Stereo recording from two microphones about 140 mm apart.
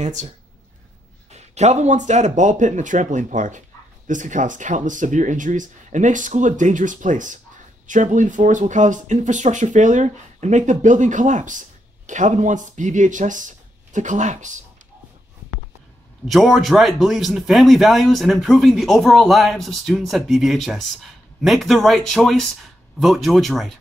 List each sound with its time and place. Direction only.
0.0 s speech: 55° right (ahead or behind)
1.3 s speech: 55° right (ahead or behind)
16.3 s speech: centre (ahead or behind)